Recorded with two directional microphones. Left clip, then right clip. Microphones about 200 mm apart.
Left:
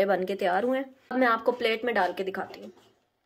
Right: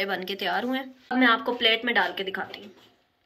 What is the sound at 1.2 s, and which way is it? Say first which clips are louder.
Speech: right 2 dB; 30° left (ahead or behind).